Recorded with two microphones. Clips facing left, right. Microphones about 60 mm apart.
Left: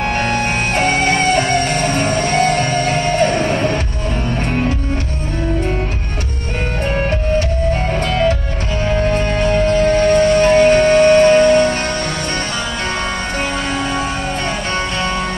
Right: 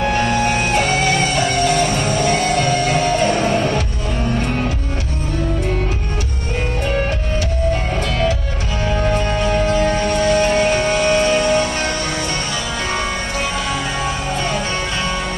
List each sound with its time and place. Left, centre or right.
0.0 s music: left
9.1 s music: left